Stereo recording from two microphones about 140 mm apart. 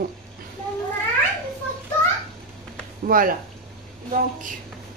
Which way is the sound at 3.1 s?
90° right.